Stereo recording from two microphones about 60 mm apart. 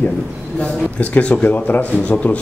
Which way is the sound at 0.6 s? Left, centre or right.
Left.